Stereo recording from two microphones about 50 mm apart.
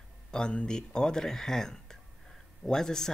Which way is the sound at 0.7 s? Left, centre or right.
Centre.